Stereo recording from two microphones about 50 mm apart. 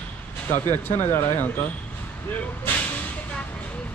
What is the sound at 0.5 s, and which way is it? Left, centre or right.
Speech, left.